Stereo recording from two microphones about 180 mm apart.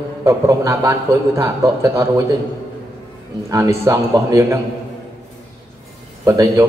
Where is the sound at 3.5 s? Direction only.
15° right (ahead or behind).